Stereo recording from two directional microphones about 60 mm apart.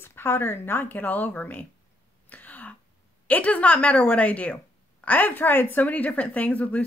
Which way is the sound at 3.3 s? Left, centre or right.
Left.